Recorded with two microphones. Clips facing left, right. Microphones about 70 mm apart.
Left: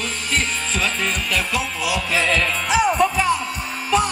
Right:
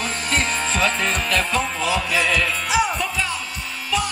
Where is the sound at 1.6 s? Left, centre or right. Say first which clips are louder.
Right 2 dB; right.